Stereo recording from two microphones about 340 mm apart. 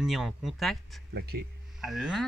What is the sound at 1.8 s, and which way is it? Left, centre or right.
Speech, centre.